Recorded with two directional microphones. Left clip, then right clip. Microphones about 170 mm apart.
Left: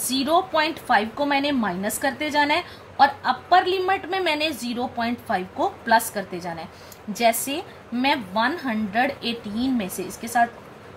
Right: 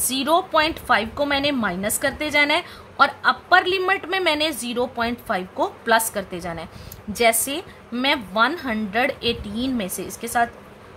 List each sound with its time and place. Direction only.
0.0 s a woman's voice: 35° right (ahead or behind)